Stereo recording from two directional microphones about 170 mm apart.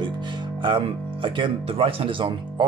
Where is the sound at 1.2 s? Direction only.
30° right (ahead or behind).